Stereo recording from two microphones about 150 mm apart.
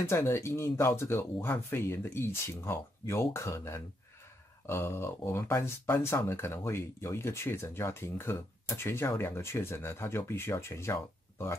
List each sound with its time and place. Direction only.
0.0 s speech: 15° left (ahead or behind)